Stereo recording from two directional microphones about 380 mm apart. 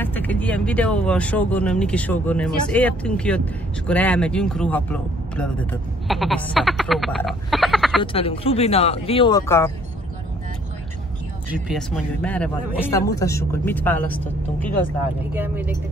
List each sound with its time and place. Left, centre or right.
0.0 s speech: centre
8.0 s speech: centre
11.5 s speech: centre